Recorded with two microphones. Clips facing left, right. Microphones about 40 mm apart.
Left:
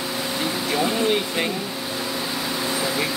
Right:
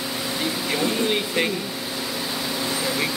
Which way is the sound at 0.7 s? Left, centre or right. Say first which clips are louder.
Left 2 dB; centre.